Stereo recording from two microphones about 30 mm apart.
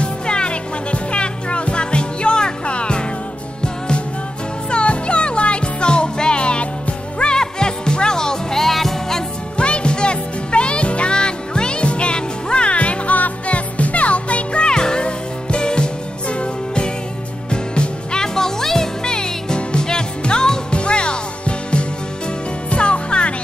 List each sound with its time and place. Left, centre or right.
0.0 s music: left
7.2 s music: left; by 9.2 s centre
9.6 s music: left
14.7 s music: left